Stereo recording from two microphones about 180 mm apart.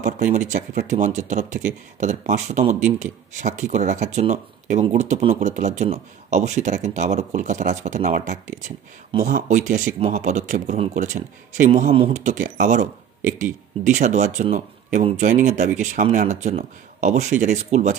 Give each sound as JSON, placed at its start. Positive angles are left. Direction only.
{"t": 0.0, "sound": "speech", "side_deg": -45}
{"t": 12.2, "sound": "speech", "side_deg": -45}